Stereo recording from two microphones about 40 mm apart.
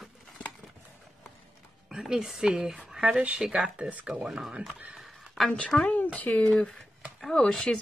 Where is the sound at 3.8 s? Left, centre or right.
Right.